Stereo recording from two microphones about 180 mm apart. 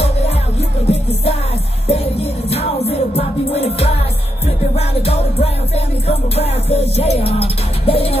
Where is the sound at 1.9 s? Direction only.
35° left (ahead or behind).